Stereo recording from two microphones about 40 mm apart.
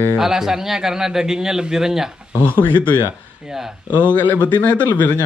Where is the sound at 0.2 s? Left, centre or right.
Centre.